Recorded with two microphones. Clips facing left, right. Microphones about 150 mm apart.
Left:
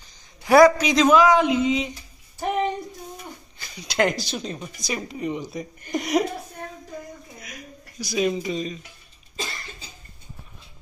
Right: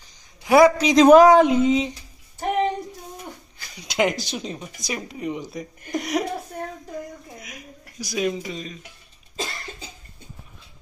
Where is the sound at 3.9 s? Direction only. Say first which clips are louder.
Even; 15° right (ahead or behind).